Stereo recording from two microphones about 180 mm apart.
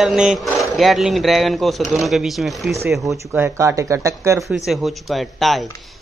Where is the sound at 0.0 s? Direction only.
5° right (ahead or behind).